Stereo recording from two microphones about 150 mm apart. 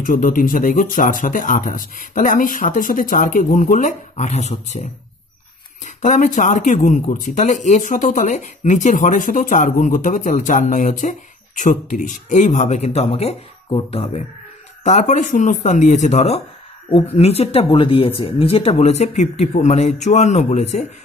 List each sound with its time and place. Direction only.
0.0 s speech: 65° left (ahead or behind)
5.9 s speech: 55° left (ahead or behind); by 14.2 s 40° left (ahead or behind)
14.8 s speech: 50° left (ahead or behind)